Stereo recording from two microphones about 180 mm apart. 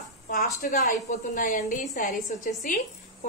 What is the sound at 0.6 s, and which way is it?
A woman's voice, 40° left (ahead or behind).